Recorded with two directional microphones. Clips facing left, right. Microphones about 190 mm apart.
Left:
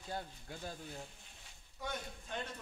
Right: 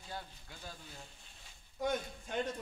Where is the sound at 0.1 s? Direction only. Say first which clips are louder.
Left 3 dB; 45° left (ahead or behind).